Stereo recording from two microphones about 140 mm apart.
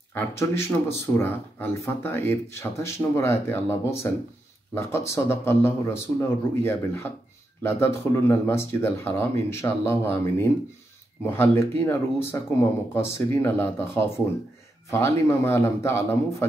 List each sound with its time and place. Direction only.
0.1 s speech: 20° left (ahead or behind)